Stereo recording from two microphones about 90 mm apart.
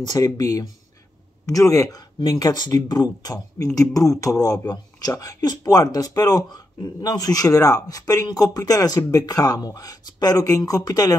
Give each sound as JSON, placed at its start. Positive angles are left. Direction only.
{"t": 0.0, "sound": "speech", "side_deg": 45}